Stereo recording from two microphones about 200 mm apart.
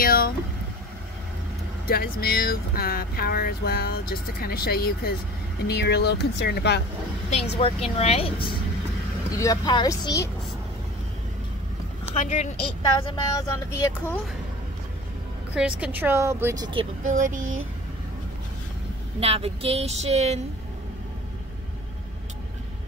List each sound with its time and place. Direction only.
0.0 s vehicle: 45° left (ahead or behind)
1.9 s speech: 50° left (ahead or behind)
7.2 s a woman's voice: 30° left (ahead or behind); by 10.3 s 15° left (ahead or behind)
12.1 s a woman's voice: 35° left (ahead or behind)
13.4 s speech: 15° left (ahead or behind)
15.5 s speech: 5° right (ahead or behind)
17.0 s speech: 40° right (ahead or behind)
19.1 s speech: 30° right (ahead or behind)